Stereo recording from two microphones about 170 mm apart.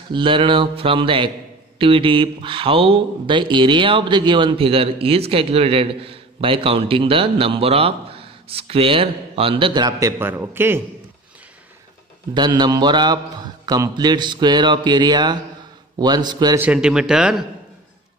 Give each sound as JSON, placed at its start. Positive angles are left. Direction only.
{"t": 0.1, "sound": "speech", "side_deg": -30}
{"t": 12.4, "sound": "speech", "side_deg": -25}
{"t": 16.5, "sound": "a man's voice", "side_deg": -10}